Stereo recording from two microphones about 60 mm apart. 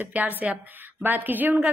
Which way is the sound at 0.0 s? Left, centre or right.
Right.